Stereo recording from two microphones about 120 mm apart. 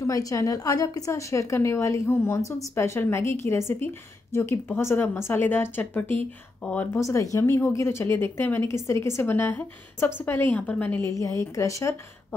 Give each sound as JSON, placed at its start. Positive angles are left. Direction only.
{"t": 0.0, "sound": "a woman's voice", "side_deg": 30}
{"t": 6.9, "sound": "a woman's voice", "side_deg": 25}
{"t": 11.1, "sound": "a woman's voice", "side_deg": 25}